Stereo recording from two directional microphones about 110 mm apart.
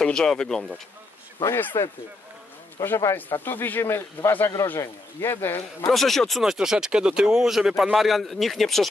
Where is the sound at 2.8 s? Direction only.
20° left (ahead or behind).